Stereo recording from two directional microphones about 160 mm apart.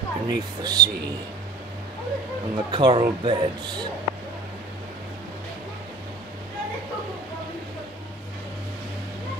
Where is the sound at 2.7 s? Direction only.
30° right (ahead or behind).